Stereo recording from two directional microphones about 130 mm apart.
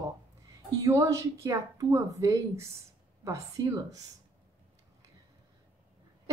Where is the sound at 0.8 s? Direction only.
25° right (ahead or behind).